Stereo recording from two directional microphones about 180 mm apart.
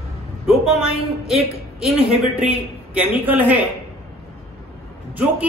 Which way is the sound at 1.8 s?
5° right (ahead or behind).